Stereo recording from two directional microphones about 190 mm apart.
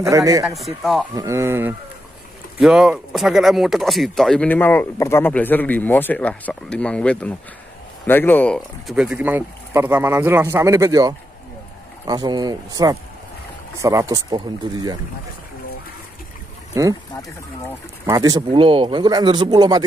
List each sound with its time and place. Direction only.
0.0 s speech: 15° right (ahead or behind); by 8.5 s 10° left (ahead or behind)
8.5 s speech: centre (ahead or behind); by 15.0 s 20° right (ahead or behind)
16.8 s speech: 15° right (ahead or behind)
17.1 s speech: 20° left (ahead or behind)
18.0 s speech: 20° right (ahead or behind)